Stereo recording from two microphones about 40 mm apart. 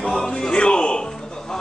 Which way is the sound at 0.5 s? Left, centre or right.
Left.